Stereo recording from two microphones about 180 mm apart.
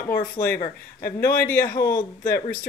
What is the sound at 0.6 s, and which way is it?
Speech, 15° left (ahead or behind).